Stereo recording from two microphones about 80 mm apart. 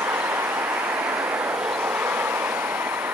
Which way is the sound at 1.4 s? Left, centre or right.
Right.